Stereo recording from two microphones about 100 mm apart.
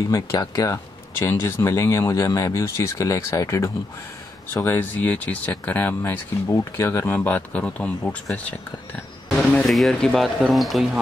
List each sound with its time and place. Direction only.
0.1 s speech: 35° left (ahead or behind)
4.6 s speech: 20° left (ahead or behind)
9.7 s speech: centre (ahead or behind)